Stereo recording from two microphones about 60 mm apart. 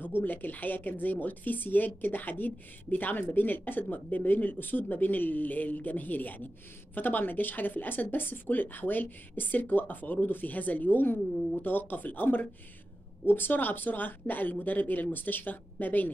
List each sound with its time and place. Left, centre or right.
0.2 s speech: left